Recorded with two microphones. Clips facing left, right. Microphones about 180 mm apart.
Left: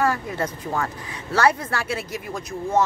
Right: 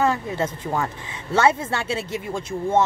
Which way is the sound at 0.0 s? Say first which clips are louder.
Right 1 dB; 25° right (ahead or behind).